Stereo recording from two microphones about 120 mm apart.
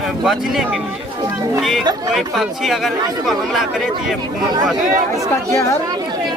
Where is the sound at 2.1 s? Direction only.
Centre (ahead or behind).